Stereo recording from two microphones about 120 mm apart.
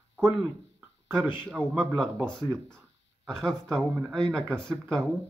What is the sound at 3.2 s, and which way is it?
Speech, 5° left (ahead or behind).